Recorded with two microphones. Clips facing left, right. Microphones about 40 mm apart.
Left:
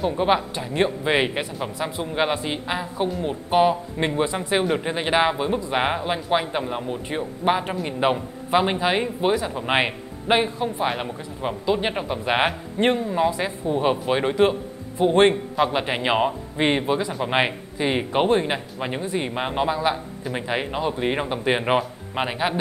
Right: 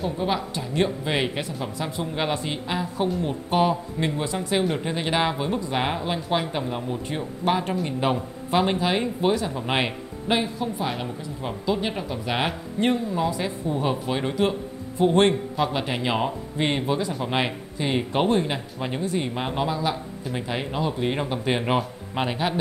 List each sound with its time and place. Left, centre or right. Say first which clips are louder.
0.2 s a man's voice: left 5 dB; left
4.0 s a man's voice: left 6 dB; left